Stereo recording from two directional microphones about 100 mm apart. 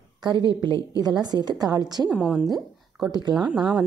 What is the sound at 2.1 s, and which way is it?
Speech, 10° right (ahead or behind).